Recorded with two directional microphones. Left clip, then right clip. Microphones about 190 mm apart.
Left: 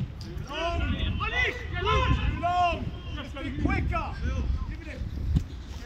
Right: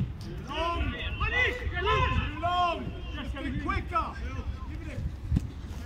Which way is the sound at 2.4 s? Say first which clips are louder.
Left 2 dB; 60° right (ahead or behind).